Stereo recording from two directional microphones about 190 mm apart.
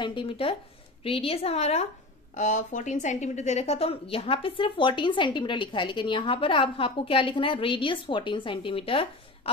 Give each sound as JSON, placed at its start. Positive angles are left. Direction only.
{"t": 0.0, "sound": "a woman's voice", "side_deg": 25}